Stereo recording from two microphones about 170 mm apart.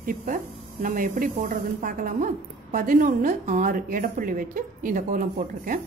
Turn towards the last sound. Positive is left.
turn(degrees=-55)  # may be behind; listen again after turning